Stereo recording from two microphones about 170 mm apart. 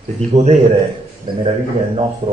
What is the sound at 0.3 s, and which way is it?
Speech, 40° right (ahead or behind).